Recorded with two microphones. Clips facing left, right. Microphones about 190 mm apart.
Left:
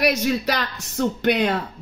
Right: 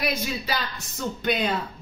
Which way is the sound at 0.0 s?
80° left.